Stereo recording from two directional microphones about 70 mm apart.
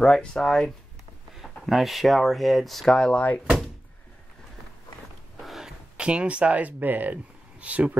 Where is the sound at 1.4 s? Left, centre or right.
Centre.